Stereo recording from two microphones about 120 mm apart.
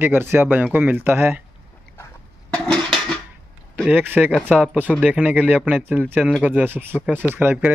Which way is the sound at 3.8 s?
15° right (ahead or behind).